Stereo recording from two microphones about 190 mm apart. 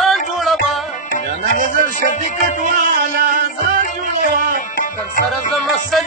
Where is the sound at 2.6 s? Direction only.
45° right (ahead or behind).